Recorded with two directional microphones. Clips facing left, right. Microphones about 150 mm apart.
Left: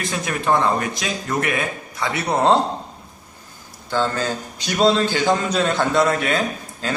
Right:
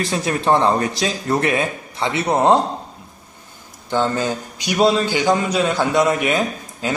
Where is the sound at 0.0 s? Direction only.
30° right (ahead or behind).